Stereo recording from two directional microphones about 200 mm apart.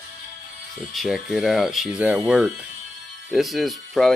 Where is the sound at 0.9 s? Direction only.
Centre (ahead or behind).